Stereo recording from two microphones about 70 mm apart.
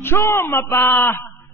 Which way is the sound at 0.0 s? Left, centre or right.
Left.